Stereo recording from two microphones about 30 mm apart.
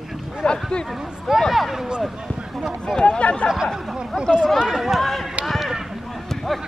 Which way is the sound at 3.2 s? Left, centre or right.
Left.